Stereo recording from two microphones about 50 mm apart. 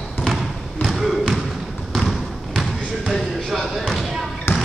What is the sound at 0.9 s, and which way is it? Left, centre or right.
Trickle, centre.